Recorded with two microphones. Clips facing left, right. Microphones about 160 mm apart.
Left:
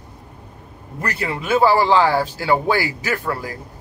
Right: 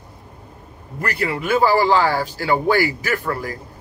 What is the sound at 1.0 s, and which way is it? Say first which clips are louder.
Speech: right 2 dB; 20° left (ahead or behind).